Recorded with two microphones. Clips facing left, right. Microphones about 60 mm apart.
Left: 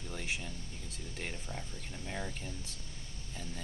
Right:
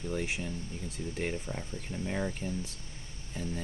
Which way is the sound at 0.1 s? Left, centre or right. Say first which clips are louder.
Right 5 dB; right.